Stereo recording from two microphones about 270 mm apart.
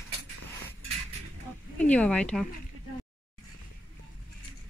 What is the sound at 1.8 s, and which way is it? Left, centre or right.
Speech, centre.